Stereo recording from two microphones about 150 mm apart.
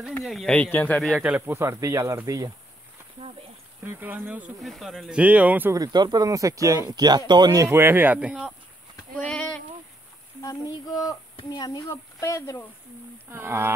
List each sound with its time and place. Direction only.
0.2 s a man's voice: centre (ahead or behind)
1.2 s speech: 10° right (ahead or behind)
3.8 s speech: 15° right (ahead or behind)
4.6 s speech: centre (ahead or behind)
5.8 s speech: 30° right (ahead or behind); by 8.5 s 5° right (ahead or behind)
9.1 s a sound: 5° left (ahead or behind)
10.4 s child singing: 25° left (ahead or behind)
11.3 s speech: 30° left (ahead or behind)
11.9 s child singing: 20° left (ahead or behind)
13.3 s speech: 15° right (ahead or behind)